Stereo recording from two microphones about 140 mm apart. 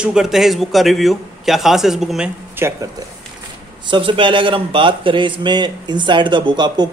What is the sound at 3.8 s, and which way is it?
A man's voice, 35° right (ahead or behind).